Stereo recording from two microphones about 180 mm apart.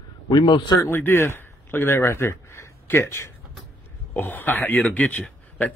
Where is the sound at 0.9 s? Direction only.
10° left (ahead or behind).